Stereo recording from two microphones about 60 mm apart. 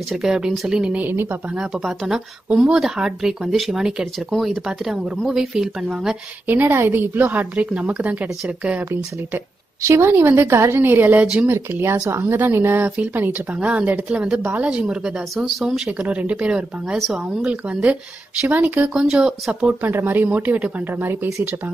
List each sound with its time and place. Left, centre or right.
0.1 s speech: centre
0.9 s speech: right
1.6 s speech: centre
6.4 s speech: right
9.8 s a woman's voice: right; by 15.1 s centre
15.3 s speech: centre
16.0 s speech: right; by 17.5 s centre
17.5 s speech: right
19.0 s speech: centre
19.6 s speech: right